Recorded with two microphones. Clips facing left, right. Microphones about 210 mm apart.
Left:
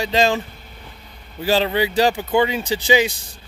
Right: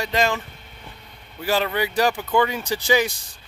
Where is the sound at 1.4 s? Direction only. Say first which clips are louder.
Left 4 dB; 30° left (ahead or behind).